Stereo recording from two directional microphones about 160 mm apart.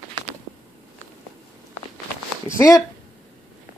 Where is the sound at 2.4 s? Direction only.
20° left (ahead or behind).